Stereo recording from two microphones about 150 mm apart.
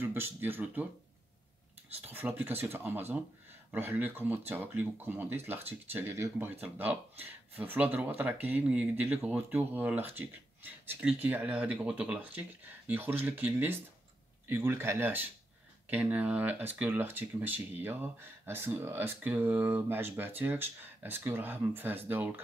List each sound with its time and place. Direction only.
0.0 s speech: 15° right (ahead or behind)
2.0 s speech: 10° right (ahead or behind)